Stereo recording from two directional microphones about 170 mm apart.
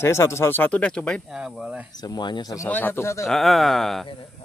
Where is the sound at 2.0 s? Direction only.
25° left (ahead or behind).